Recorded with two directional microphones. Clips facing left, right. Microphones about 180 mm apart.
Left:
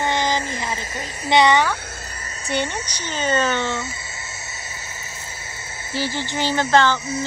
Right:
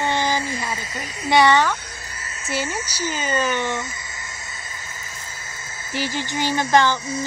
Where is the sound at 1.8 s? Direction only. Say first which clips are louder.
Left 3 dB; 50° left (ahead or behind).